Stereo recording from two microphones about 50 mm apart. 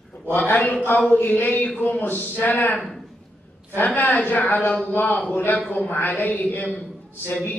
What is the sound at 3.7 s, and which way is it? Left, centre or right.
A man's voice, left.